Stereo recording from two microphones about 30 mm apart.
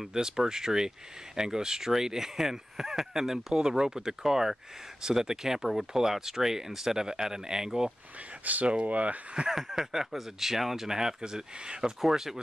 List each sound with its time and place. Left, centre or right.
0.1 s speech: centre
3.6 s speech: right
8.4 s speech: right
9.5 s speech: centre
11.0 s speech: right
12.0 s speech: centre